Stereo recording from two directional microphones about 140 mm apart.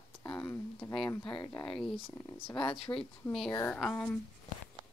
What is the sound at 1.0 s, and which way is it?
Speech, 35° left (ahead or behind).